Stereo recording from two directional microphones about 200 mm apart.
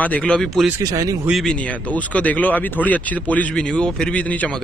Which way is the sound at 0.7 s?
15° right (ahead or behind).